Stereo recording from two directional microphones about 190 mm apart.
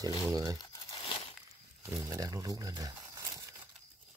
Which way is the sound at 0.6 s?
20° left (ahead or behind).